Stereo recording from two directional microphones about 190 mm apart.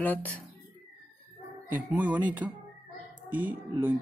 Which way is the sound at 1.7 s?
10° right (ahead or behind).